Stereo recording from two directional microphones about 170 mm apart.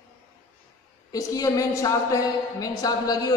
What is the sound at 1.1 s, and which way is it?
A woman's voice, 20° left (ahead or behind).